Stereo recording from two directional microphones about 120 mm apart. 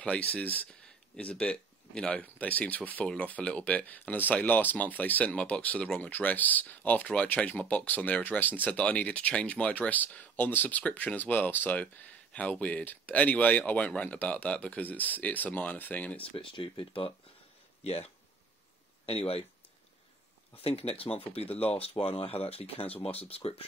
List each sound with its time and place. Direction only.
0.0 s speech: 10° left (ahead or behind)
16.3 s speech: 45° left (ahead or behind)
17.8 s speech: 60° left (ahead or behind)
20.6 s speech: 55° left (ahead or behind)